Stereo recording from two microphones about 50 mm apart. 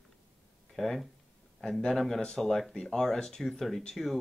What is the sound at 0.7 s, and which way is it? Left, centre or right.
Speech, centre.